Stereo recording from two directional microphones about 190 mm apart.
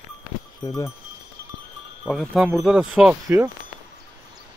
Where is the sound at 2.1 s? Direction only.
Centre (ahead or behind).